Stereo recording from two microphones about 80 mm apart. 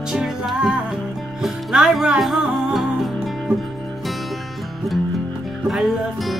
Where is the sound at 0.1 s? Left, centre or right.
Centre.